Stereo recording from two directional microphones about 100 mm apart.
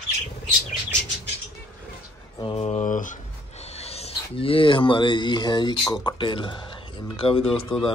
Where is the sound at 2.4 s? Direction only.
80° left.